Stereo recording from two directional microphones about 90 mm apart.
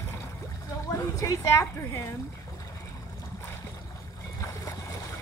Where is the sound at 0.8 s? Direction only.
40° left (ahead or behind).